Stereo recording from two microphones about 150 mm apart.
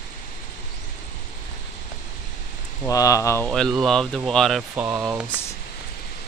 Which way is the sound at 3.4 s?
5° left (ahead or behind).